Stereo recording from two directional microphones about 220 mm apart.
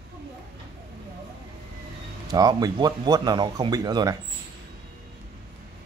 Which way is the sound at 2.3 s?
15° right (ahead or behind).